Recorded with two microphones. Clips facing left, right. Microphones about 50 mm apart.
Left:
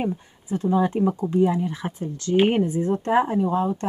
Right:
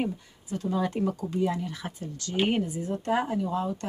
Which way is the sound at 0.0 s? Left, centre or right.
Left.